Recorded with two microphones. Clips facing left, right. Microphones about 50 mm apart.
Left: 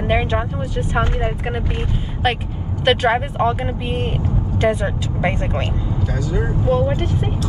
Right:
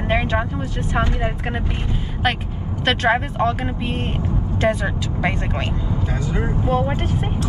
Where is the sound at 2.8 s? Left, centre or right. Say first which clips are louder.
Left 2 dB; centre.